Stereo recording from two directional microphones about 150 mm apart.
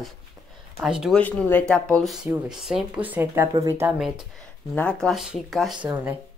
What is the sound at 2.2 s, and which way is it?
A woman's voice, 5° right (ahead or behind).